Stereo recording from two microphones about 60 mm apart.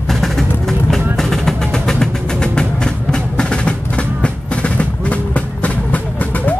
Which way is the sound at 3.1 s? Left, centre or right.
Centre.